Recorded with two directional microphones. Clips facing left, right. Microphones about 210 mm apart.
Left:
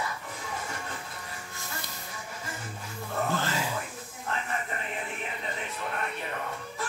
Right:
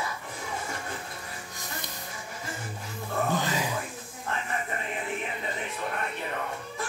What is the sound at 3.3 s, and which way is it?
Music, 15° right (ahead or behind).